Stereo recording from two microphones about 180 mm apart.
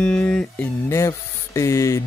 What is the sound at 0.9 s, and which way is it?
Speech, 15° left (ahead or behind).